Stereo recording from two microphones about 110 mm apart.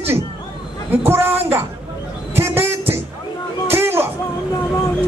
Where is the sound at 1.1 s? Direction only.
20° right (ahead or behind).